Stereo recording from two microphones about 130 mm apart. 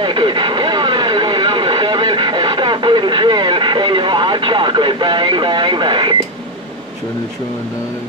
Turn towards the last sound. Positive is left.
turn(degrees=-35)  # may be behind; listen again after turning